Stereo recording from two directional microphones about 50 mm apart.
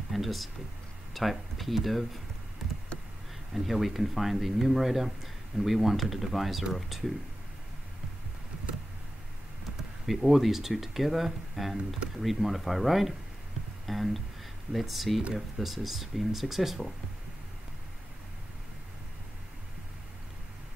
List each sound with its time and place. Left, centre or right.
0.1 s speech: centre
3.5 s speech: centre
10.0 s speech: centre